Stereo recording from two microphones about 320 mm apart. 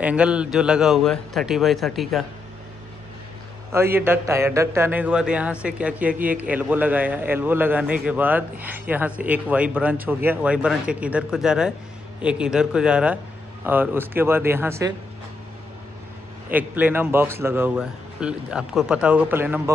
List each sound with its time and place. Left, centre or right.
0.0 s a man's voice: centre
3.7 s a man's voice: centre
16.4 s a man's voice: centre